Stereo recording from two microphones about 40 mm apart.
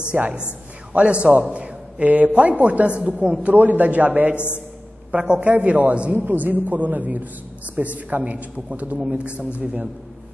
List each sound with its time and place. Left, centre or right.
0.1 s a man's voice: right
0.4 s a man's voice: right
1.5 s a sound: right
2.0 s a woman's voice: right
3.5 s a man's voice: right
5.1 s a man's voice: right
5.4 s a woman's voice: right
6.1 s a man's voice: right